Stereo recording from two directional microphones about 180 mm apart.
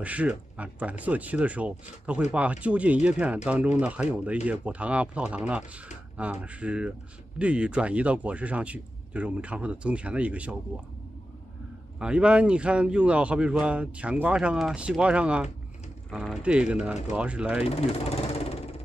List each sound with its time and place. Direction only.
0.0 s a man's voice: 10° right (ahead or behind)
12.0 s a man's voice: 5° right (ahead or behind)
17.6 s a sound: 35° left (ahead or behind)